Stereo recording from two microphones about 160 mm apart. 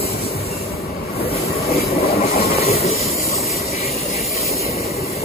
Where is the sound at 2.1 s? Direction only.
70° left (ahead or behind).